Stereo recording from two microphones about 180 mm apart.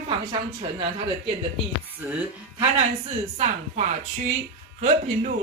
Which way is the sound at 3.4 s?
40° right (ahead or behind).